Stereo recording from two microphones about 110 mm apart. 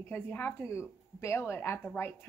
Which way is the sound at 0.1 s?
15° left (ahead or behind).